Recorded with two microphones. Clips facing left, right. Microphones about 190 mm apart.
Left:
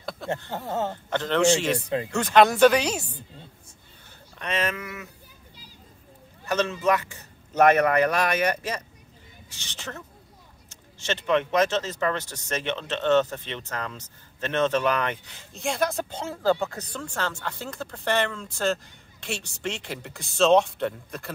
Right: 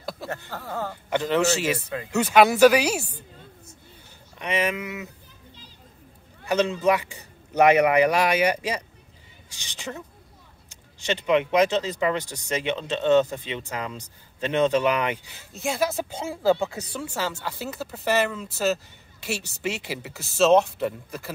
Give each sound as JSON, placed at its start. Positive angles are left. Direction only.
{"t": 0.5, "sound": "speech", "side_deg": 25}
{"t": 1.1, "sound": "speech", "side_deg": -10}
{"t": 4.4, "sound": "speech", "side_deg": -15}
{"t": 6.4, "sound": "speech", "side_deg": -15}